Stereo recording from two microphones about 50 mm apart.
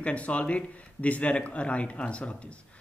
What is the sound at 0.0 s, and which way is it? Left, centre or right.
Speech, left.